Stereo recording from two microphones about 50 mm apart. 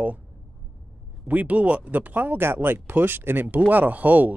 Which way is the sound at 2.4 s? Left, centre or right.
Right.